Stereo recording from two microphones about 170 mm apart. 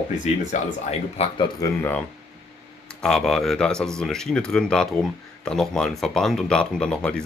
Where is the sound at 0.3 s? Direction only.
40° left (ahead or behind).